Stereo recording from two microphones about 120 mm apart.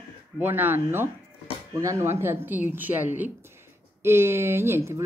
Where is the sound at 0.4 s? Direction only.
15° right (ahead or behind).